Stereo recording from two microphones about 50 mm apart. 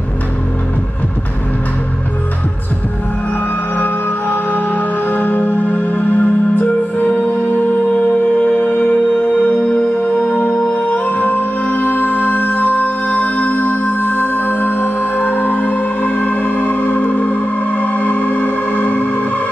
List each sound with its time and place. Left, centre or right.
3.7 s music: left